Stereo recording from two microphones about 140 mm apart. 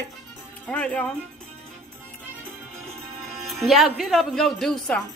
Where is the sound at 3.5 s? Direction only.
Centre (ahead or behind).